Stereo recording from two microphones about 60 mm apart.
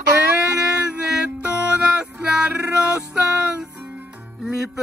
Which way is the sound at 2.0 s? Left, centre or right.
Centre.